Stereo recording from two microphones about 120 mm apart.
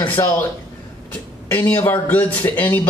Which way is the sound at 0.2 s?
25° left (ahead or behind).